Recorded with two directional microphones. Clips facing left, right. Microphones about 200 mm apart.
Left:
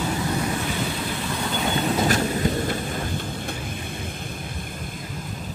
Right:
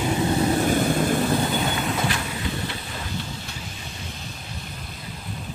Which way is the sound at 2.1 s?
40° left (ahead or behind).